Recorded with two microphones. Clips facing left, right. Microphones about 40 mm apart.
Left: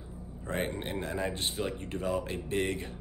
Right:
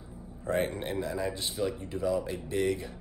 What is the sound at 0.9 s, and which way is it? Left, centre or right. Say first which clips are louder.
Speech: even; left.